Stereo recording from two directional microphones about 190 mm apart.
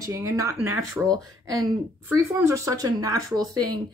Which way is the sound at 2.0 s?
15° right (ahead or behind).